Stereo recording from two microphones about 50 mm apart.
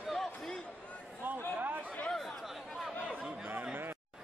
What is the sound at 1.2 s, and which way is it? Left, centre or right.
Speech, right.